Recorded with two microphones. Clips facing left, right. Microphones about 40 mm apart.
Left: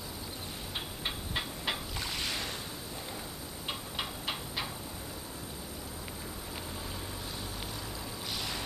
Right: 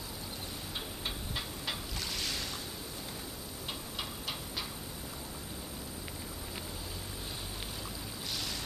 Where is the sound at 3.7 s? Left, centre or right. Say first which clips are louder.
Left 4 dB; left.